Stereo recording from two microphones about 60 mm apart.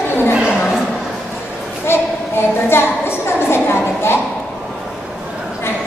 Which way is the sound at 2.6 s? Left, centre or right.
Left.